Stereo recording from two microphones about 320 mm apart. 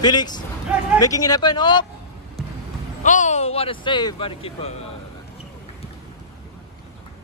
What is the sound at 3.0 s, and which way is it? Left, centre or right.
Speech, left.